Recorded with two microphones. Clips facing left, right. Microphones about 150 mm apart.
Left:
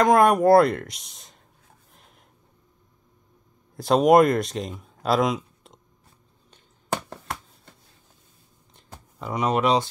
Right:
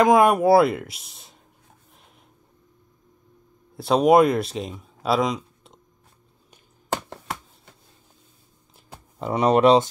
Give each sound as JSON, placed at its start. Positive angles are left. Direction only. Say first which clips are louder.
{"t": 0.0, "sound": "speech", "louder": "right 1 dB", "side_deg": 0}
{"t": 3.7, "sound": "speech", "louder": "even", "side_deg": 0}
{"t": 9.2, "sound": "speech", "louder": "right 6 dB", "side_deg": -30}